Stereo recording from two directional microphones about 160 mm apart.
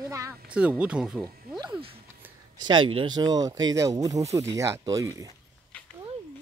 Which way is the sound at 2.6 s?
30° right (ahead or behind).